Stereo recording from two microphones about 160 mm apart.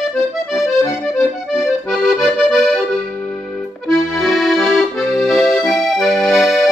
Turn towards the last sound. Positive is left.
turn(degrees=0)  # may be behind; listen again after turning